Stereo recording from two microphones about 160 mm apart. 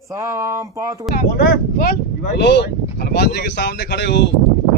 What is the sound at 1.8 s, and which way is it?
Speech, 80° left.